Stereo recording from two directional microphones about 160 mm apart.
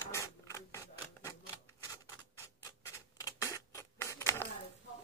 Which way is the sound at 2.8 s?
20° left (ahead or behind).